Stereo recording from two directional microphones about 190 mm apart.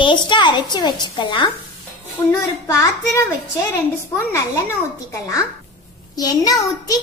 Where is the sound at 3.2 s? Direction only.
15° left (ahead or behind).